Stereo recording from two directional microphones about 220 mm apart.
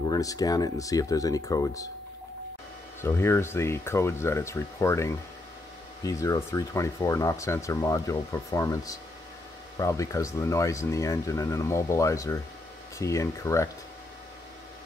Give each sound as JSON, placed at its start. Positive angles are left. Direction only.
{"t": 0.0, "sound": "speech", "side_deg": 15}
{"t": 3.0, "sound": "speech", "side_deg": 10}